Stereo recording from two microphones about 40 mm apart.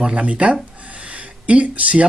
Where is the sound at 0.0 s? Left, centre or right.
Right.